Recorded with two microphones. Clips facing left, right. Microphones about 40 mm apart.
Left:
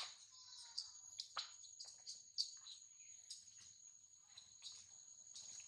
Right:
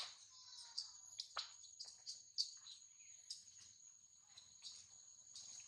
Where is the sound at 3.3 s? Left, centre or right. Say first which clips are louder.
Right 3 dB; left.